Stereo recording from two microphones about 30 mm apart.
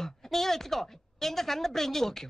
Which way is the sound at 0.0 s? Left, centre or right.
Centre.